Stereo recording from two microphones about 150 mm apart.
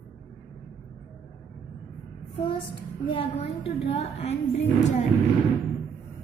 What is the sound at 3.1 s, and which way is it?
A woman's voice, 35° left (ahead or behind).